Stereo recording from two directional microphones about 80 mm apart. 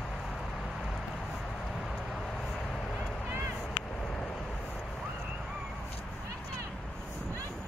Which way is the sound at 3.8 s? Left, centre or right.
Centre.